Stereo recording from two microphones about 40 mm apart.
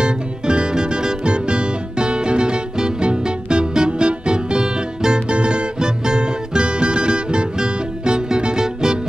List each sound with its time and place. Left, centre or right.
0.0 s music: right